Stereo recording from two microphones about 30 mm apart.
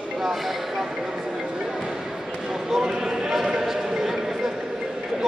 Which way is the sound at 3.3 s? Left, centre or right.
Centre.